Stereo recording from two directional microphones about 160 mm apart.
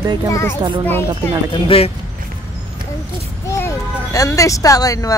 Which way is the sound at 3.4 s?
15° left (ahead or behind).